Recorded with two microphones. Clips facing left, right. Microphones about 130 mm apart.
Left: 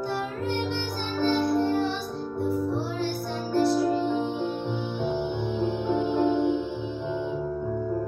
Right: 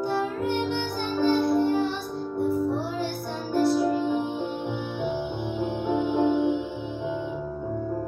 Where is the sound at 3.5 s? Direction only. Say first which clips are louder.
Right 1 dB; 15° right (ahead or behind).